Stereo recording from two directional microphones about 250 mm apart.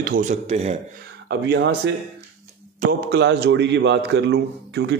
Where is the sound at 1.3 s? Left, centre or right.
Right.